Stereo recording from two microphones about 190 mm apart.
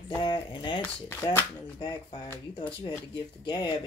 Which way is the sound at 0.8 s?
10° left (ahead or behind).